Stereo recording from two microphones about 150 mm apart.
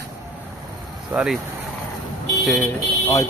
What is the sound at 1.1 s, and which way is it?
Speech, 5° right (ahead or behind).